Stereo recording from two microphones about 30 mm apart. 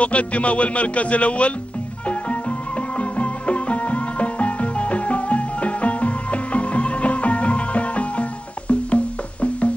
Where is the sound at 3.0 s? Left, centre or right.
Left.